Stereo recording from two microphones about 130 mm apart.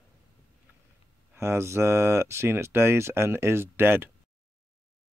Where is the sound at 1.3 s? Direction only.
20° right (ahead or behind).